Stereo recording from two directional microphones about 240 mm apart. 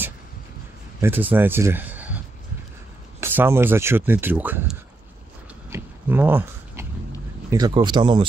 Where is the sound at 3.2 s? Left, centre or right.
Centre.